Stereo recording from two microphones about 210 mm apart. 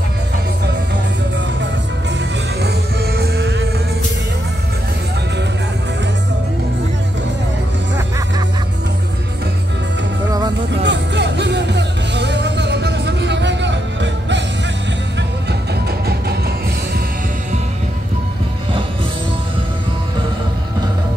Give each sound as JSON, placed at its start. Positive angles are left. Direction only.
{"t": 3.2, "sound": "music", "side_deg": -50}
{"t": 10.8, "sound": "music", "side_deg": -55}